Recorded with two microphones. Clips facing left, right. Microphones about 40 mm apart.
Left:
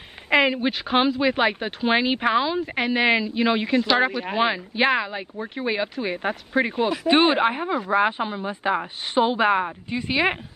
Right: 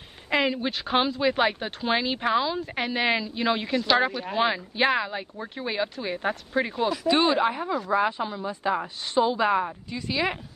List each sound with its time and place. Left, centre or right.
0.3 s speech: centre
2.6 s speech: centre
7.1 s speech: left